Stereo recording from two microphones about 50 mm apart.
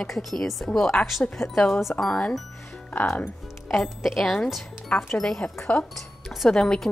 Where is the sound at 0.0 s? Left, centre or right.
Centre.